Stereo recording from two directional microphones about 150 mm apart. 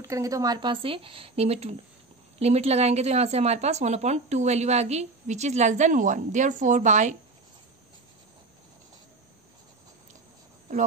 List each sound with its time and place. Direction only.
0.0 s a woman's voice: 20° right (ahead or behind); by 7.2 s 50° right (ahead or behind)